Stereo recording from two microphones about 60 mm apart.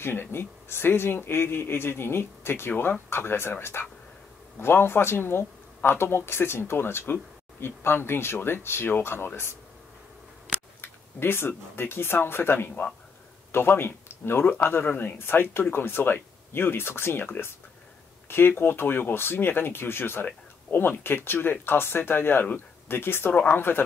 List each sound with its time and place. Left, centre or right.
0.0 s speech: left
10.8 s speech: left
18.6 s speech: left